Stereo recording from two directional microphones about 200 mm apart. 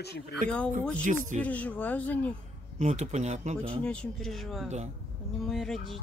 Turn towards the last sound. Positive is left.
turn(degrees=0)  # may be behind; listen again after turning